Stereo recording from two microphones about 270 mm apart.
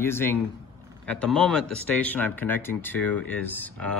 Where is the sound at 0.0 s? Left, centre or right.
Centre.